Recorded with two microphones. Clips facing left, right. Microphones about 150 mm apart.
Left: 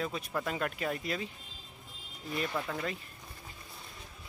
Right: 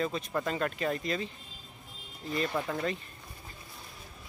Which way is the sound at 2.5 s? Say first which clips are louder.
Right 3 dB; 10° right (ahead or behind).